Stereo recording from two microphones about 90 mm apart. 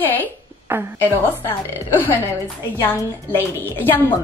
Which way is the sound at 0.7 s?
20° right (ahead or behind).